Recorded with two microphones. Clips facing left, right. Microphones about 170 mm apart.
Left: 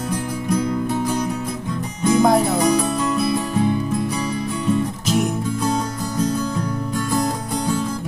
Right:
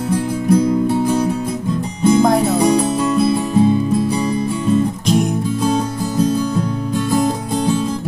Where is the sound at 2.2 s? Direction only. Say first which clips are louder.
Even; centre (ahead or behind).